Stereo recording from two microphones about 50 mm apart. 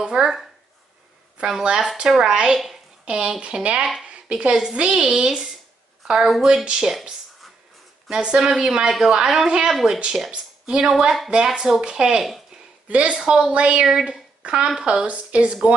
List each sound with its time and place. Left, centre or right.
0.0 s speech: centre
6.0 s speech: centre
6.6 s speech: centre
8.1 s speech: centre
8.9 s a woman's voice: centre
9.7 s a woman's voice: centre
10.3 s speech: centre
12.8 s a woman's voice: right
13.1 s speech: centre
13.5 s a woman's voice: right